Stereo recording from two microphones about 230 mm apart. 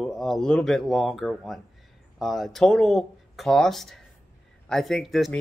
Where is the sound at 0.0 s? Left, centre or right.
Centre.